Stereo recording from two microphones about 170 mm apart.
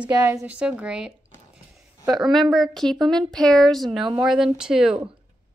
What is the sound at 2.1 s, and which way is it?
A woman's voice, centre (ahead or behind).